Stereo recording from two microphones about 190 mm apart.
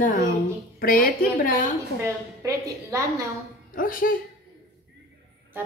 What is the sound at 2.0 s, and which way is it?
A woman's voice, 15° right (ahead or behind).